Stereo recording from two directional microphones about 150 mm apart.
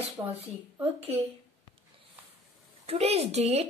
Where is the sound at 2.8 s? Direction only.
45° right (ahead or behind).